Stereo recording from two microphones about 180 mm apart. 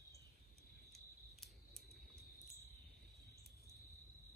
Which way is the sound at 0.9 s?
Centre (ahead or behind).